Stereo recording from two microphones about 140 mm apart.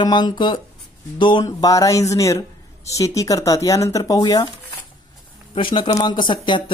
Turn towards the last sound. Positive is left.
turn(degrees=35)  # may be behind; listen again after turning